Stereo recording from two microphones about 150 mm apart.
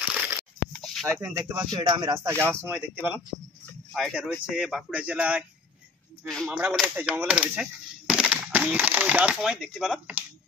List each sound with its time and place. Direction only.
0.0 s a sound: 10° right (ahead or behind)
0.7 s a sound: 5° left (ahead or behind)
1.0 s speech: 20° right (ahead or behind)
1.7 s speech: 30° right (ahead or behind)
2.4 s speech: 15° right (ahead or behind)
3.9 s speech: centre (ahead or behind)
6.2 s speech: 5° left (ahead or behind)